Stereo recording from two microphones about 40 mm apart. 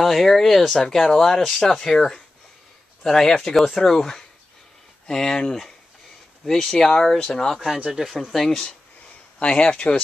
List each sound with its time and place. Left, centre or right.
0.0 s speech: centre
6.4 s speech: centre
7.9 s speech: centre
9.4 s speech: left